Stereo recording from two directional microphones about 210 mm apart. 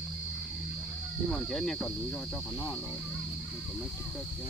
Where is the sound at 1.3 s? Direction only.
Centre (ahead or behind).